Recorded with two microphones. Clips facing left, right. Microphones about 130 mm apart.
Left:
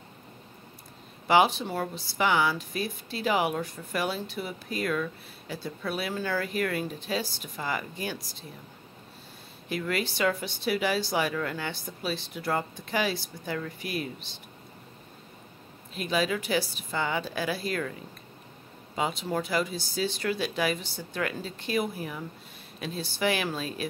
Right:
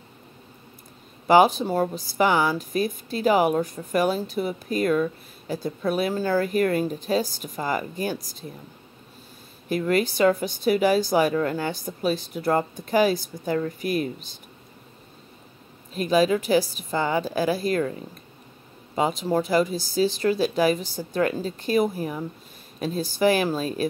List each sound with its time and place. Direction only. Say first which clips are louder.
1.2 s a woman's voice: right 6 dB; 40° right (ahead or behind)
9.7 s a woman's voice: right 8 dB; 45° right (ahead or behind)
15.9 s speech: right 8 dB; 40° right (ahead or behind)
18.9 s speech: right 6 dB; 40° right (ahead or behind)